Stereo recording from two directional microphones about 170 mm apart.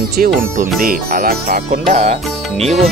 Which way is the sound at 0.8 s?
55° right (ahead or behind).